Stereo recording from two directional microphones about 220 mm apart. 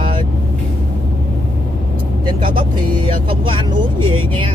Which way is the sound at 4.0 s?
20° right (ahead or behind).